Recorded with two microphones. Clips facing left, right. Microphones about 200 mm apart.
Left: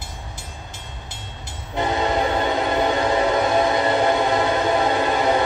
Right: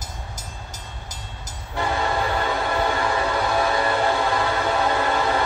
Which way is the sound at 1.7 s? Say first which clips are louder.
Left 3 dB; 20° left (ahead or behind).